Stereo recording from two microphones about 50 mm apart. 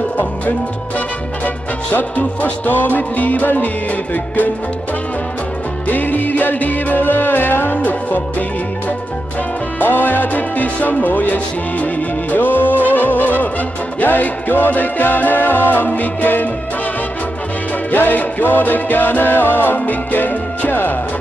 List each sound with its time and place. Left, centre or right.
2.0 s music: left
5.9 s music: left
7.7 s music: left
17.9 s music: left